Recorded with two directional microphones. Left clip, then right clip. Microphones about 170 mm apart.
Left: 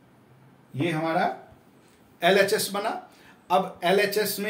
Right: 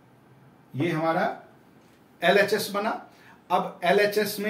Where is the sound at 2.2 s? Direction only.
30° left (ahead or behind).